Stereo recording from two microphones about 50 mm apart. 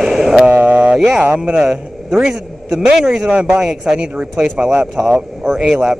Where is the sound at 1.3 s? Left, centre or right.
Centre.